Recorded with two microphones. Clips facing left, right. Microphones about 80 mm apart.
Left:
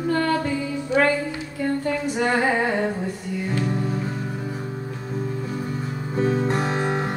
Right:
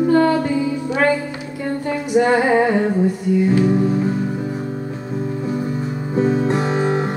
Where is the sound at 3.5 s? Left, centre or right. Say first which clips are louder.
Right 9 dB; centre.